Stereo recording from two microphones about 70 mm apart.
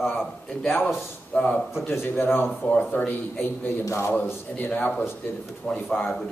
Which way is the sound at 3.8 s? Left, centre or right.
Left.